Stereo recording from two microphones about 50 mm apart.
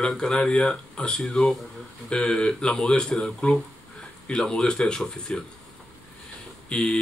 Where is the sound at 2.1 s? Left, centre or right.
Centre.